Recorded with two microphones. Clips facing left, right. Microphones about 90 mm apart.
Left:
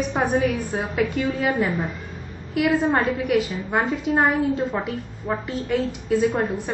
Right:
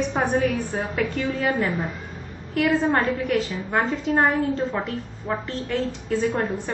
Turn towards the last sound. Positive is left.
turn(degrees=15)  # may be behind; listen again after turning